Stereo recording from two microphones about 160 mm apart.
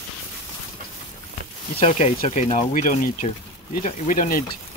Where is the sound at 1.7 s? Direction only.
40° left (ahead or behind); by 4.4 s 65° left (ahead or behind).